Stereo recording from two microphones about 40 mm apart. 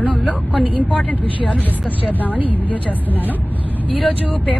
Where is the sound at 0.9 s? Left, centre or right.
Left.